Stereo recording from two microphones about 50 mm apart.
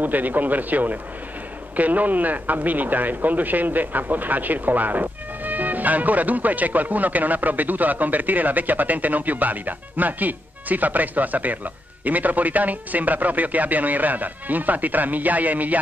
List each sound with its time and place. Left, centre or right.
0.0 s speech: right